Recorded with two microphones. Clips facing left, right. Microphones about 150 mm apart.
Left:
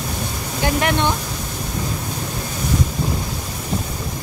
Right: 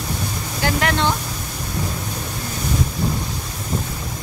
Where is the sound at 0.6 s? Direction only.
20° left (ahead or behind).